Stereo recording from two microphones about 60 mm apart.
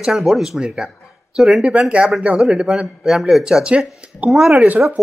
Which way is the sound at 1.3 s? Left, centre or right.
Centre.